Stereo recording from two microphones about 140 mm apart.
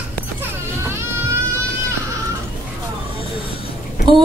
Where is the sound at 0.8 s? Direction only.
20° right (ahead or behind).